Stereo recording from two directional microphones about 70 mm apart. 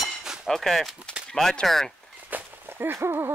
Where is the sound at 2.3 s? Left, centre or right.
Right.